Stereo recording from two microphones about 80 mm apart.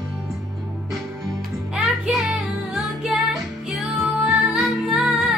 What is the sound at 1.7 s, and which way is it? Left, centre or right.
Music, centre.